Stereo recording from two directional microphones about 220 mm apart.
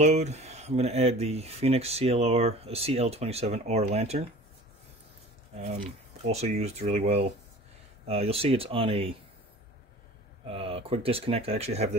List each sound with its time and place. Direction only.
0.0 s speech: 30° right (ahead or behind)
5.6 s speech: 30° right (ahead or behind)
10.4 s speech: 25° right (ahead or behind)